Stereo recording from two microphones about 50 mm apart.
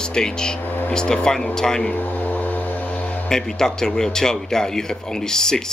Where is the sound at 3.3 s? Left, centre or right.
Centre.